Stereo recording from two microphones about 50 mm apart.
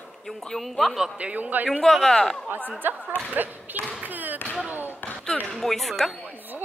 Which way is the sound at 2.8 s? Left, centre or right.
Right.